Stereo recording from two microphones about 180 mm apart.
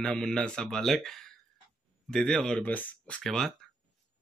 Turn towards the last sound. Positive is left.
turn(degrees=5)  # may be behind; listen again after turning